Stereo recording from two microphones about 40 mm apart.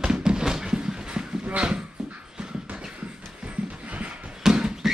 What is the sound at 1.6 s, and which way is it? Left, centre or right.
Dog, centre.